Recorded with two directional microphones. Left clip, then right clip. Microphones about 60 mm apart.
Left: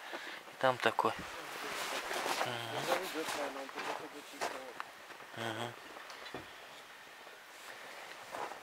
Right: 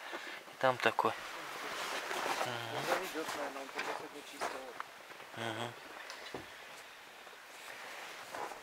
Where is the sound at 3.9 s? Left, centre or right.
Centre.